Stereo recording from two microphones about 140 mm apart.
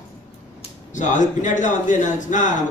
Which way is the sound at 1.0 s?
60° left (ahead or behind).